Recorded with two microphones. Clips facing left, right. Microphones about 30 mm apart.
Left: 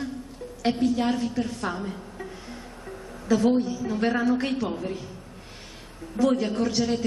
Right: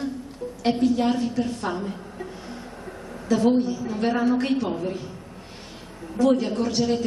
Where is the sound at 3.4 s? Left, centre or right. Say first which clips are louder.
Right 4 dB; centre.